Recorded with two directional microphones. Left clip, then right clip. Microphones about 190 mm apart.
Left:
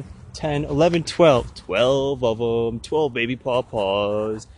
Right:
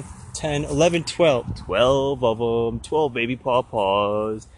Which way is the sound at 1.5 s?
15° left (ahead or behind).